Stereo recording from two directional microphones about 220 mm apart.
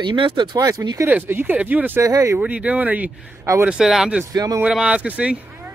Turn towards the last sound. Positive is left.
turn(degrees=-5)  # may be behind; listen again after turning